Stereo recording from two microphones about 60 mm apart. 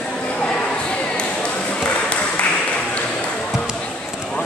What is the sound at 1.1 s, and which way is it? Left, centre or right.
Ping, centre.